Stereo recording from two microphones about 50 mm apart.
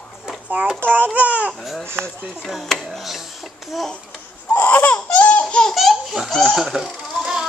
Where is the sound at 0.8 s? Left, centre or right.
Right.